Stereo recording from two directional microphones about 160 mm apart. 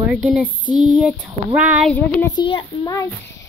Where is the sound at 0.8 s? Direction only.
10° right (ahead or behind).